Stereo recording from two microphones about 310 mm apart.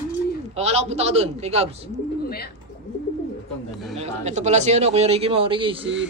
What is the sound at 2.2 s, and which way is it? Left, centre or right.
Speech, left.